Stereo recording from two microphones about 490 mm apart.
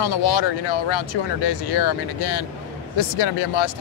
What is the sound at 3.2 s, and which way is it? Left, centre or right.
Speech, left.